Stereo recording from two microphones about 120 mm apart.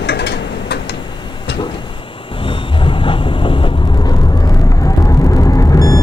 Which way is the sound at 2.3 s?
45° left (ahead or behind).